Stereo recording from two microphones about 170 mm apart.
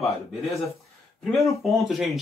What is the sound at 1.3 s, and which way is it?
Speech, centre (ahead or behind).